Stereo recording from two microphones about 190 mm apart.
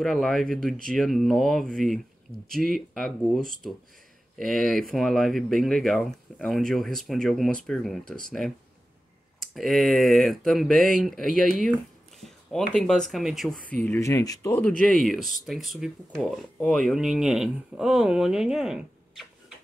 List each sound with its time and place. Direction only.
0.0 s speech: centre (ahead or behind)
13.8 s speech: 15° left (ahead or behind)
14.8 s speech: centre (ahead or behind)